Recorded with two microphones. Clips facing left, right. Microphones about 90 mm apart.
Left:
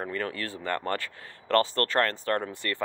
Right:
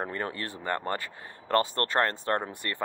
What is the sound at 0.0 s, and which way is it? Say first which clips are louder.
Speech: left 1 dB; 25° right (ahead or behind).